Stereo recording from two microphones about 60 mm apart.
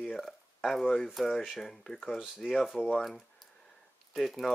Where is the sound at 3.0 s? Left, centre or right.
Centre.